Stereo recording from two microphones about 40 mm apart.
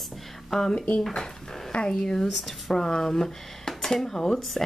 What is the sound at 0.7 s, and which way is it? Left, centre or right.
Speech, left.